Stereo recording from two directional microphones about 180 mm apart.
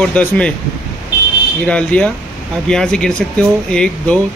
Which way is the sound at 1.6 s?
5° left (ahead or behind).